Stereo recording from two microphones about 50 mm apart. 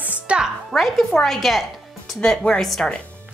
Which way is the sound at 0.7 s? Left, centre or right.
Centre.